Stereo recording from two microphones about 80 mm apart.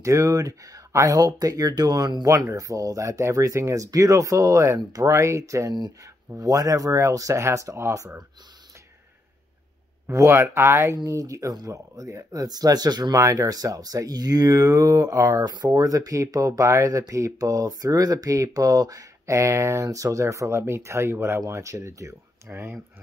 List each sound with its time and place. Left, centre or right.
0.0 s speech: right
2.2 s speech: right
10.0 s speech: right
11.1 s speech: right
13.1 s speech: right